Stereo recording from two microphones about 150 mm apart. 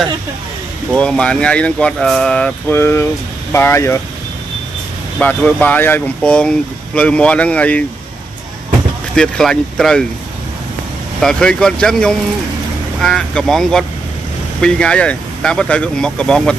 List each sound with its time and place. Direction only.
0.9 s speech: 5° left (ahead or behind)
5.2 s speech: 10° left (ahead or behind)
9.1 s speech: 5° left (ahead or behind)
11.1 s speech: 5° left (ahead or behind)